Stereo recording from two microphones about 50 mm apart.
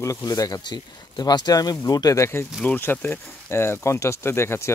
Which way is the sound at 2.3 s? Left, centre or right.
Left.